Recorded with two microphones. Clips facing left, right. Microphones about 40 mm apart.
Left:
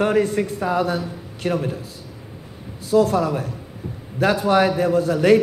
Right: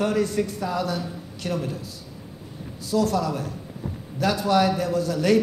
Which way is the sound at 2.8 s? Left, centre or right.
Left.